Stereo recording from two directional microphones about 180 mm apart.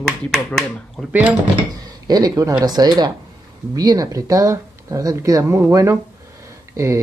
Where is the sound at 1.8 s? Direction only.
20° right (ahead or behind).